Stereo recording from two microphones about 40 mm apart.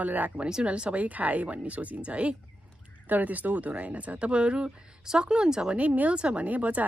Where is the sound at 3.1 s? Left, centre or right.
Right.